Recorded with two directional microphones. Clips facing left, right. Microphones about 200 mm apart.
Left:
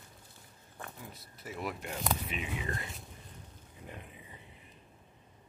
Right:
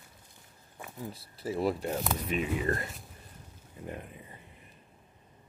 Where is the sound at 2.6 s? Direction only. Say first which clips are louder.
Right 8 dB; 45° right (ahead or behind).